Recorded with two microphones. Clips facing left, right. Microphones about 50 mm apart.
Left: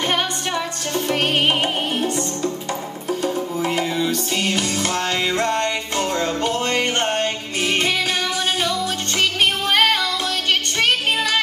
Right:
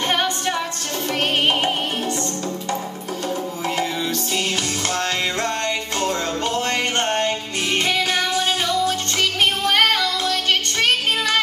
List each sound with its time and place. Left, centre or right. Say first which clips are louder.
0.1 s music: right 1 dB; centre
1.1 s music: even; centre
3.6 s music: left 2 dB; centre
9.7 s child singing: even; centre